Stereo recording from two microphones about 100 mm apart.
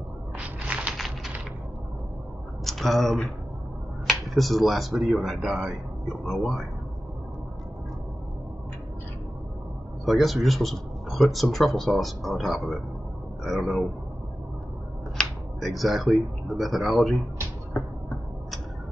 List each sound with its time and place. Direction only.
0.9 s typing: centre (ahead or behind)
2.6 s speech: centre (ahead or behind)
10.0 s speech: centre (ahead or behind)
15.1 s speech: centre (ahead or behind)
17.8 s a sound: 20° left (ahead or behind)